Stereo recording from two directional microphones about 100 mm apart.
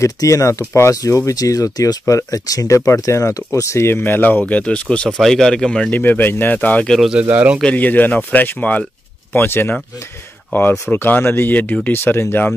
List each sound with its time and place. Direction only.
0.0 s speech: 35° left (ahead or behind); by 7.0 s 15° left (ahead or behind)
7.0 s speech: 10° right (ahead or behind)
7.6 s speech: 15° left (ahead or behind)